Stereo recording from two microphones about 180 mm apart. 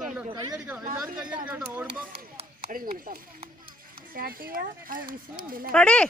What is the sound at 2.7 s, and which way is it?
Speech, 50° right (ahead or behind).